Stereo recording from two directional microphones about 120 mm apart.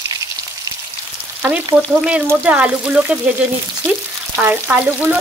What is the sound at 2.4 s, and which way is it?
Speech, 10° right (ahead or behind).